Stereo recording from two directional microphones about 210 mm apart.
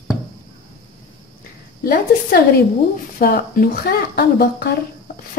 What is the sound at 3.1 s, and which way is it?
A woman's voice, 45° left (ahead or behind).